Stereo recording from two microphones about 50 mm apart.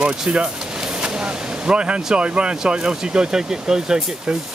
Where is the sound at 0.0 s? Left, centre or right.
Centre.